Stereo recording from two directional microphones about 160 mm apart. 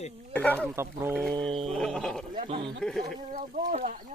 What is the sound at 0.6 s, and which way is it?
Speech, 15° right (ahead or behind).